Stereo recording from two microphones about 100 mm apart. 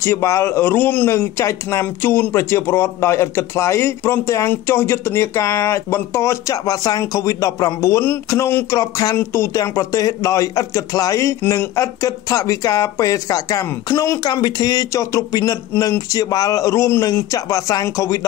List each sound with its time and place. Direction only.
0.0 s a man's voice: 30° left (ahead or behind)